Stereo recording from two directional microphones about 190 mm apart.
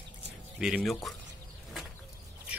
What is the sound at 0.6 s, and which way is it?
Speech, centre (ahead or behind).